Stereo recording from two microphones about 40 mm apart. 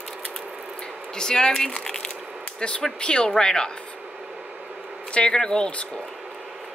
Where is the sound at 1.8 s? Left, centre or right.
Centre.